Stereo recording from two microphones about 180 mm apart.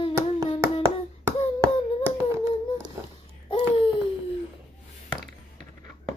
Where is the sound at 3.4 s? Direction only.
30° left (ahead or behind).